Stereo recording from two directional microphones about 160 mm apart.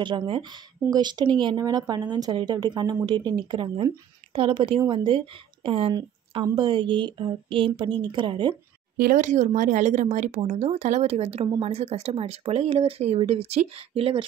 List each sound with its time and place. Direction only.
0.0 s speech: 30° right (ahead or behind)
9.1 s speech: 50° right (ahead or behind)